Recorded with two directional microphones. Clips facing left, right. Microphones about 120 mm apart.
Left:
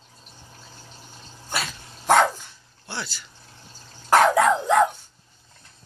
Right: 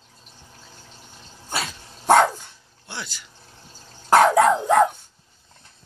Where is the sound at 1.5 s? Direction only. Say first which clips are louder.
Right 1 dB; 25° right (ahead or behind).